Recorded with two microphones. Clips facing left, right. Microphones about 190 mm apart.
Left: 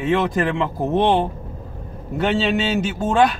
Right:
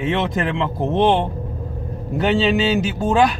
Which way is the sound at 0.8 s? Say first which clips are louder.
Right 1 dB; 25° right (ahead or behind).